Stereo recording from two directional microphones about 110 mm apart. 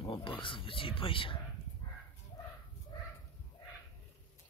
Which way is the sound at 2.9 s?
45° left (ahead or behind).